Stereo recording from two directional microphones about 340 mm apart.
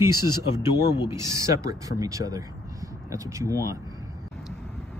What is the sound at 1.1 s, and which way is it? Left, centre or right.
Speech, centre.